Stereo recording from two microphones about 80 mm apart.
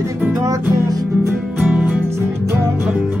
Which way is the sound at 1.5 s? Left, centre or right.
Right.